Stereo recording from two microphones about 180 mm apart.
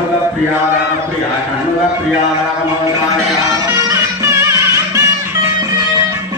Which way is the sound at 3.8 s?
15° right (ahead or behind).